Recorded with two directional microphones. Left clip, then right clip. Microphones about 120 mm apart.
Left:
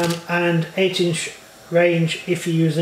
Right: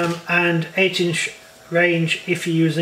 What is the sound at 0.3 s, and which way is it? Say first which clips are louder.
Speech: right 4 dB; 35° right (ahead or behind).